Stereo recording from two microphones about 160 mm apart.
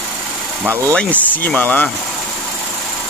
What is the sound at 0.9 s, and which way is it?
Speech, 10° left (ahead or behind).